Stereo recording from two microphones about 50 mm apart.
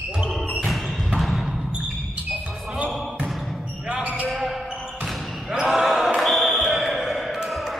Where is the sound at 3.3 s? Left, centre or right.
Centre.